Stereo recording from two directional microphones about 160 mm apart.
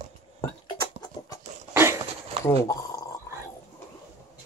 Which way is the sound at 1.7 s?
15° right (ahead or behind).